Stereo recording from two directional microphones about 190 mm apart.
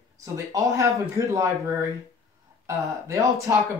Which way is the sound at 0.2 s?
15° right (ahead or behind).